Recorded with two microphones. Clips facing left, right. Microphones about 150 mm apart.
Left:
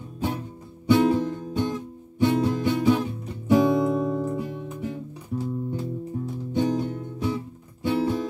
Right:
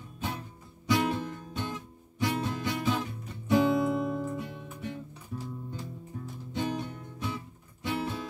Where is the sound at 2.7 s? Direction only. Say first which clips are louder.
Left 8 dB; 20° left (ahead or behind).